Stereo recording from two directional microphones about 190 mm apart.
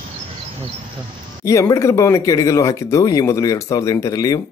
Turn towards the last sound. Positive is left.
turn(degrees=20)  # may be behind; listen again after turning